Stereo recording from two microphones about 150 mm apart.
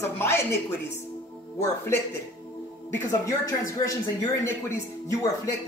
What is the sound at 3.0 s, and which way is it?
Speech, 20° left (ahead or behind).